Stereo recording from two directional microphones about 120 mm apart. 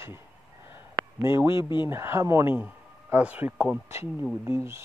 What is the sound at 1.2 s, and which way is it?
Speech, 20° right (ahead or behind).